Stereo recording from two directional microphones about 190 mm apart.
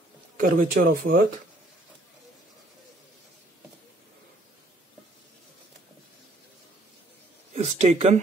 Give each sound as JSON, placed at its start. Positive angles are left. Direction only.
{"t": 0.4, "sound": "speech", "side_deg": -50}
{"t": 7.5, "sound": "speech", "side_deg": -35}